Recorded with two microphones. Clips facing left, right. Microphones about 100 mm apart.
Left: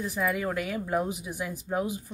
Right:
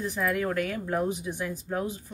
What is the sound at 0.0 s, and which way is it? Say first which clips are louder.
Speech: right 1 dB; 5° left (ahead or behind).